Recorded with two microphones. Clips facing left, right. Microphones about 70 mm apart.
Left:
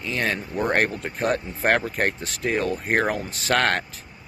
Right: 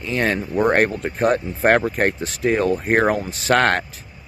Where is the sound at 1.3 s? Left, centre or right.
Right.